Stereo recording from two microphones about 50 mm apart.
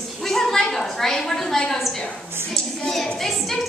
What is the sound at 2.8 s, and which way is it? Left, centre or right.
Speech, centre.